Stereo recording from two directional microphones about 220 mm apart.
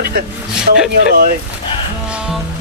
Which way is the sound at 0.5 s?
5° right (ahead or behind).